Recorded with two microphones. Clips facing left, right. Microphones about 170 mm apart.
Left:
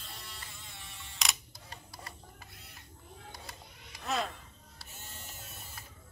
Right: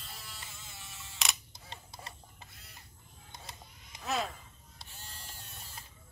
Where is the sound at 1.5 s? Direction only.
25° right (ahead or behind).